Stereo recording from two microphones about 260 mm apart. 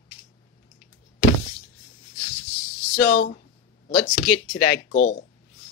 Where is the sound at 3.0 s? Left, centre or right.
Left.